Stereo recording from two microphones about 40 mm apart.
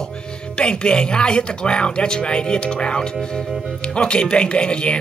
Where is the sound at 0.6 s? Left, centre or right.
Left.